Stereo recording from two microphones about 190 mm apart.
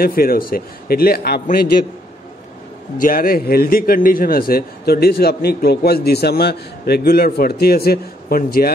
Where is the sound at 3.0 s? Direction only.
50° left (ahead or behind).